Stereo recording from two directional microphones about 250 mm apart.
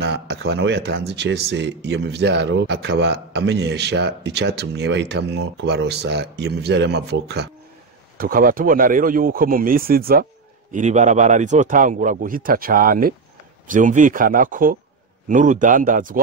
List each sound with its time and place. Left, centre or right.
0.0 s a man's voice: right